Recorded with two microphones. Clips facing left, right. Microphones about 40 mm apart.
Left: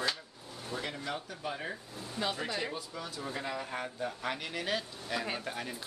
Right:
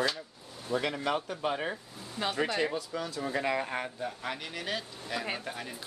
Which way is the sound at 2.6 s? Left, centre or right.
Right.